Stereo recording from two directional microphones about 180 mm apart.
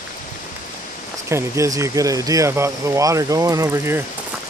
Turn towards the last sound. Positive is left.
turn(degrees=-15)  # may be behind; listen again after turning